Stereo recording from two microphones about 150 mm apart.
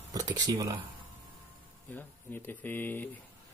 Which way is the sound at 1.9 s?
15° left (ahead or behind).